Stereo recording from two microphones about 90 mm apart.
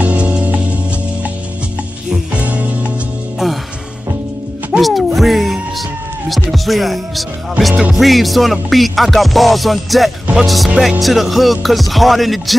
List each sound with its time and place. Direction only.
0.0 s music: 15° right (ahead or behind)
2.0 s music: 15° right (ahead or behind)
4.7 s music: centre (ahead or behind)
6.2 s speech: centre (ahead or behind)
7.9 s music: centre (ahead or behind)